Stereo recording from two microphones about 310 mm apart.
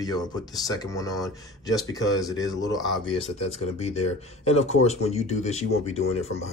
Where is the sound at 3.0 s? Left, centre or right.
Centre.